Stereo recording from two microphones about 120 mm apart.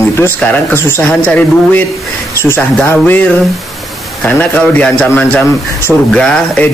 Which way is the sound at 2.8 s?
15° left (ahead or behind).